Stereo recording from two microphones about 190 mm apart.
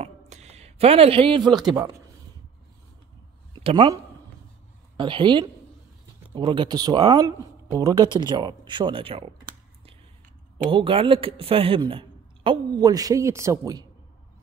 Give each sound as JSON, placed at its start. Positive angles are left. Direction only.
{"t": 0.0, "sound": "a sound", "side_deg": -35}
{"t": 3.5, "sound": "a man's voice", "side_deg": -25}
{"t": 10.7, "sound": "a man's voice", "side_deg": -30}